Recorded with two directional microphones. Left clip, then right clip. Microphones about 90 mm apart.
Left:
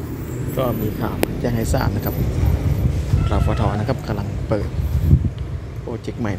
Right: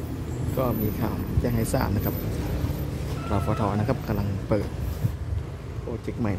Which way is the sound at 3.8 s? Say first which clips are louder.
Left 4 dB; 40° right (ahead or behind).